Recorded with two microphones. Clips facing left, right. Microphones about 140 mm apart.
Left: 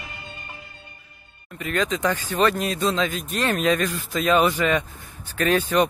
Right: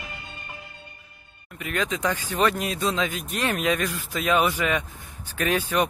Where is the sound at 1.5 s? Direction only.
5° right (ahead or behind).